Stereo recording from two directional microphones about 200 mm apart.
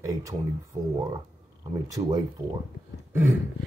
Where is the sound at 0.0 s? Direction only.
15° right (ahead or behind).